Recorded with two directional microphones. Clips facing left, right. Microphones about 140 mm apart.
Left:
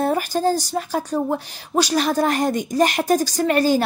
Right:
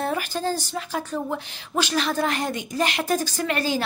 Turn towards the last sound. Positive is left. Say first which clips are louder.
# left 7 dB
turn(degrees=45)  # may be behind; listen again after turning